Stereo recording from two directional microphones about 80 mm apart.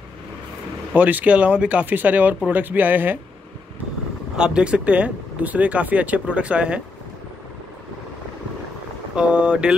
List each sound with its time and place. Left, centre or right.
0.9 s speech: centre
4.4 s speech: centre
9.1 s speech: centre